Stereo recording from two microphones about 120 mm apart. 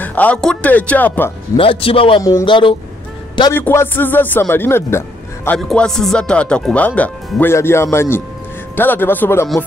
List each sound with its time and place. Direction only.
0.0 s speech: 15° left (ahead or behind)
1.6 s a man's voice: 50° left (ahead or behind)
3.5 s speech: 20° left (ahead or behind)
5.6 s speech: 5° left (ahead or behind); by 9.5 s 20° left (ahead or behind)